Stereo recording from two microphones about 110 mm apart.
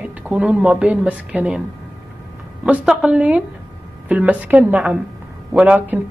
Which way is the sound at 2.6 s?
10° right (ahead or behind).